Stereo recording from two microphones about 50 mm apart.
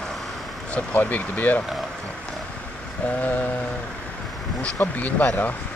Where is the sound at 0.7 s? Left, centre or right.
Left.